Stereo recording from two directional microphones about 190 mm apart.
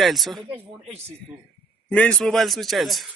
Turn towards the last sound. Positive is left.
turn(degrees=0)  # may be behind; listen again after turning